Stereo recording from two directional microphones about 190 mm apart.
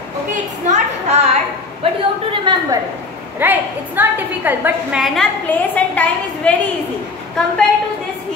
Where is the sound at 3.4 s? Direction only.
10° right (ahead or behind); by 6.5 s 10° left (ahead or behind).